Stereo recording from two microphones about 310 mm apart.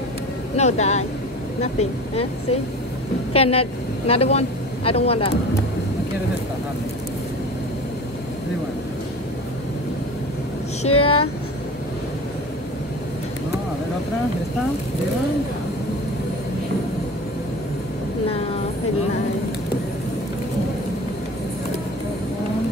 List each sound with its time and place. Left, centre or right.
0.6 s speech: left
10.8 s speech: centre